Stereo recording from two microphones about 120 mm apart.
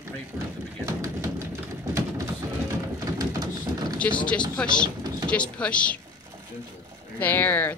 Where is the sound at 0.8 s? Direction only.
25° right (ahead or behind).